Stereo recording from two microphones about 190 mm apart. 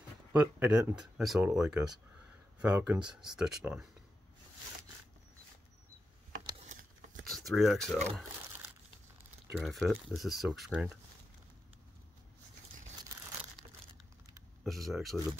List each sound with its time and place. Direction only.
0.3 s speech: 5° right (ahead or behind)
6.6 s a sound: 40° right (ahead or behind)
7.2 s speech: centre (ahead or behind)
9.5 s speech: centre (ahead or behind)
14.6 s speech: centre (ahead or behind)